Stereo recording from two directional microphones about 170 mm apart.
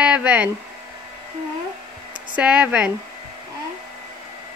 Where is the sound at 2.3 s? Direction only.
5° right (ahead or behind).